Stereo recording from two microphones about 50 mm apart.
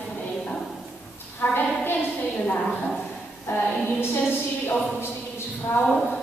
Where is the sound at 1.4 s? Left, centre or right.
Left.